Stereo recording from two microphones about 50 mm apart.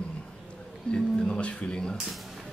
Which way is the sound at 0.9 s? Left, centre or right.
Centre.